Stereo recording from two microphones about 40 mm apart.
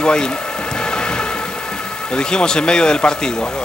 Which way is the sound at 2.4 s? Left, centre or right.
Left.